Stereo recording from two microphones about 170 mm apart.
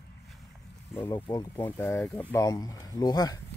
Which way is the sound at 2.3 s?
20° left (ahead or behind).